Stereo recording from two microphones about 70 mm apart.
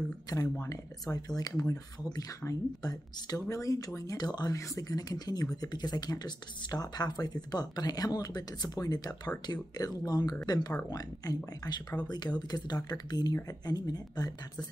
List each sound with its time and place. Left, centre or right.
0.3 s speech: left
4.2 s speech: left
4.5 s speech: left
12.0 s speech: left